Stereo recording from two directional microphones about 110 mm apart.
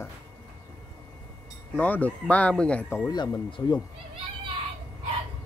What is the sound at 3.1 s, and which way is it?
Speech, 45° left (ahead or behind).